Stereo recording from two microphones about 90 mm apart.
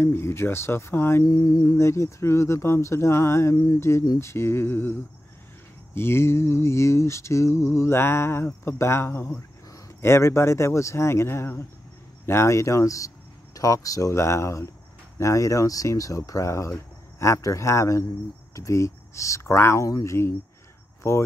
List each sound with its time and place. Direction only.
0.0 s mantra: 30° left (ahead or behind)
1.2 s mantra: 45° left (ahead or behind)
1.8 s speech: 30° left (ahead or behind)
3.5 s mantra: 45° left (ahead or behind)
4.2 s mantra: 30° left (ahead or behind)
5.9 s mantra: 25° left (ahead or behind)
9.7 s speech: 30° left (ahead or behind)